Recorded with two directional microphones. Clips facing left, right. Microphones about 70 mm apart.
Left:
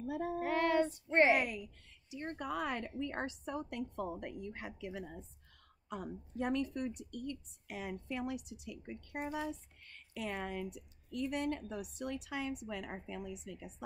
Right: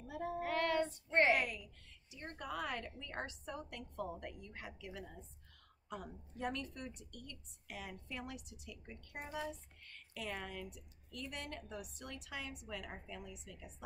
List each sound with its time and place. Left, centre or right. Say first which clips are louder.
0.0 s child singing: left 4 dB; centre
2.0 s a woman's voice: left 6 dB; left